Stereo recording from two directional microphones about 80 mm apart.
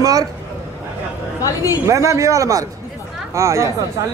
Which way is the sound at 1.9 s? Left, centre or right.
Right.